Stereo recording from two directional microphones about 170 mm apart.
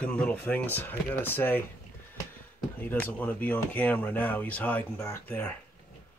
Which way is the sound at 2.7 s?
10° left (ahead or behind).